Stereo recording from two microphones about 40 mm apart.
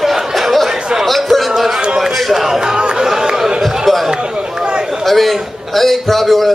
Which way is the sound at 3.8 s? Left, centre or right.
Centre.